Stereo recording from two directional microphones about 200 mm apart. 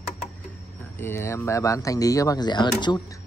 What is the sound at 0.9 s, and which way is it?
Speech, 10° left (ahead or behind).